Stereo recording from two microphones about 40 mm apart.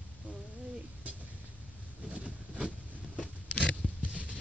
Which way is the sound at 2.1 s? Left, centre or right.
Right.